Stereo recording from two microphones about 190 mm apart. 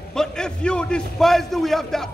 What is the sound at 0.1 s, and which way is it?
A man's voice, 5° left (ahead or behind).